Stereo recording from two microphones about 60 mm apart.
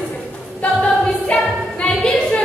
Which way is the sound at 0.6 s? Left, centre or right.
Left.